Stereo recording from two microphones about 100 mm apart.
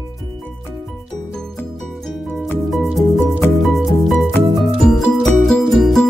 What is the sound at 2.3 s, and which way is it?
Music, 20° left (ahead or behind).